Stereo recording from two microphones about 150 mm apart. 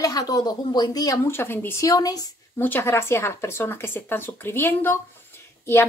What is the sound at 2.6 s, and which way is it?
Speech, 15° left (ahead or behind).